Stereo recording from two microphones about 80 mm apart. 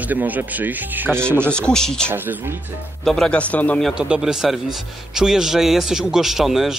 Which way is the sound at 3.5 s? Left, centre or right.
Centre.